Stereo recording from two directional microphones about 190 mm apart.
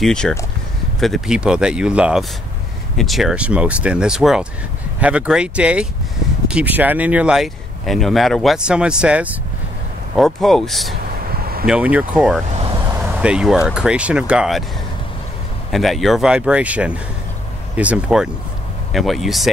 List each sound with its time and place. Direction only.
0.0 s speech: centre (ahead or behind)
11.2 s a sound: 50° right (ahead or behind)
11.6 s speech: 5° right (ahead or behind)
12.4 s vehicle: 35° right (ahead or behind)
12.9 s vehicle: 10° right (ahead or behind)
13.7 s speech: 5° right (ahead or behind)
15.7 s speech: centre (ahead or behind)